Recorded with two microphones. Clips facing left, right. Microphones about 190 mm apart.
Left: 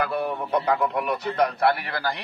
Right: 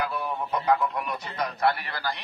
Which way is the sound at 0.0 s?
60° left (ahead or behind).